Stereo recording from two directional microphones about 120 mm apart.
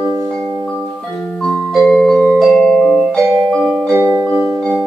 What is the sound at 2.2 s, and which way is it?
Music, 10° right (ahead or behind).